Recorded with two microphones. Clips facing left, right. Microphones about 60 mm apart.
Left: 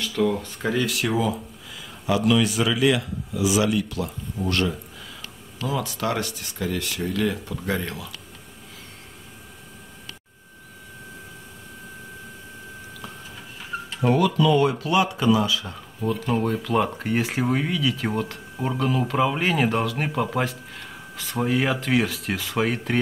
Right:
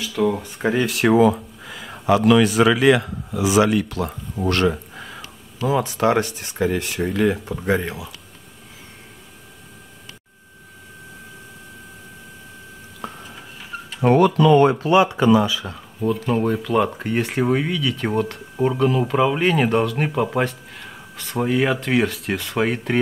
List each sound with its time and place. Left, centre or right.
0.2 s speech: centre
1.0 s speech: right
13.0 s a sound: right
14.0 s speech: right
15.6 s speech: centre